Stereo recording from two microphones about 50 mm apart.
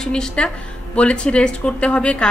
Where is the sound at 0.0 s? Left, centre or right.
Centre.